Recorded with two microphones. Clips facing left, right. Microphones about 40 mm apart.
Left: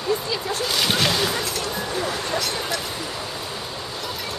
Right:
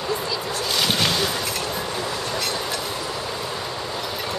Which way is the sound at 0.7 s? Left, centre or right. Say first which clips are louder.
Even; centre.